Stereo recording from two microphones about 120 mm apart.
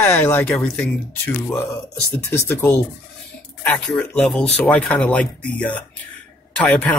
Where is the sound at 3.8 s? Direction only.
5° left (ahead or behind).